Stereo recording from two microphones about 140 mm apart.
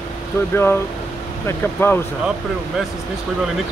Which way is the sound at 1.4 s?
15° left (ahead or behind).